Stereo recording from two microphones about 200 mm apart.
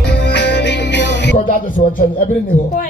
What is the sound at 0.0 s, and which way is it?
Music, 60° left (ahead or behind).